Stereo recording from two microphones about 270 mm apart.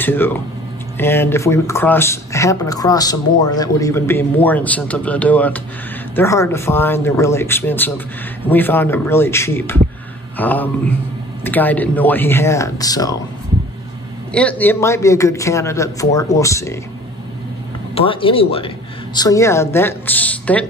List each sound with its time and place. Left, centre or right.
0.0 s speech: centre
14.3 s speech: centre
17.9 s speech: centre